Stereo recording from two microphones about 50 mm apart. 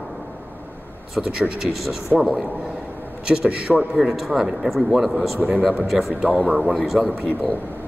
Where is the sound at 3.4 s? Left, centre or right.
Right.